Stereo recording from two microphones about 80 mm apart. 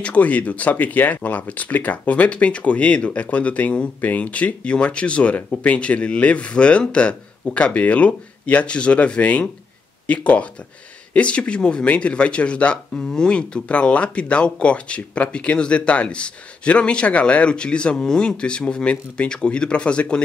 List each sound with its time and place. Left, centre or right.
0.0 s speech: centre